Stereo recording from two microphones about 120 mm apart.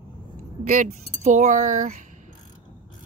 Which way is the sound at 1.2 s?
80° right.